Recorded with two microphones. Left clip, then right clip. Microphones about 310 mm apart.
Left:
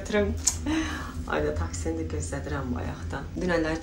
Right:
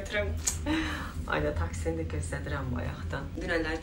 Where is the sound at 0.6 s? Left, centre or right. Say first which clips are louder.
Left 2 dB; centre.